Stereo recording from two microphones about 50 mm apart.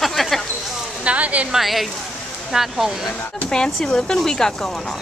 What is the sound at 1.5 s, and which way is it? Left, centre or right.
Speech, centre.